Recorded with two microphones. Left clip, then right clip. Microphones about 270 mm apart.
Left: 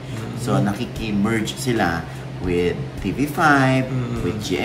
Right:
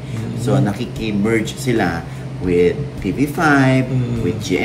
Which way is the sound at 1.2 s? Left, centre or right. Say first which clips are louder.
Right 5 dB; centre.